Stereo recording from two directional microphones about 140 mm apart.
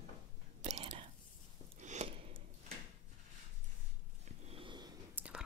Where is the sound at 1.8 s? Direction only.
55° right (ahead or behind).